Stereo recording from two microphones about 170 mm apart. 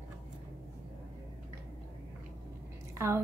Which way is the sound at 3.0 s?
15° right (ahead or behind).